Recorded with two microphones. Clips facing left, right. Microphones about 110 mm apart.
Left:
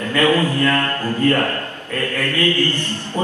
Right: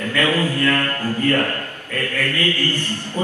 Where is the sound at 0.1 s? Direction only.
20° left (ahead or behind).